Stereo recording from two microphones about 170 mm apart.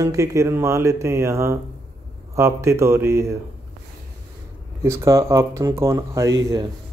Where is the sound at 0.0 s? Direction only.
20° right (ahead or behind).